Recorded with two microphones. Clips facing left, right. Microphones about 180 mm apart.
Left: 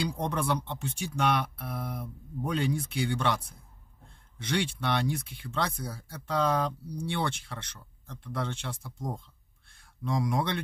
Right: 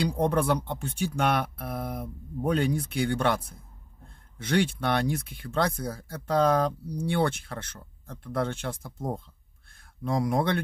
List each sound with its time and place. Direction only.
0.2 s speech: 55° right (ahead or behind)
4.5 s speech: 55° right (ahead or behind)